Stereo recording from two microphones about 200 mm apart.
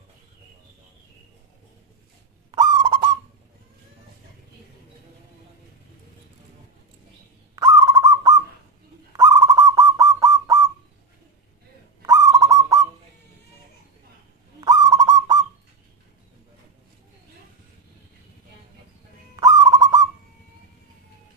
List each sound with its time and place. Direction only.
2.5 s bird: 20° right (ahead or behind)
7.5 s owl: 15° right (ahead or behind)
12.0 s owl: 15° right (ahead or behind)
14.6 s owl: 20° right (ahead or behind)
19.3 s owl: 20° right (ahead or behind)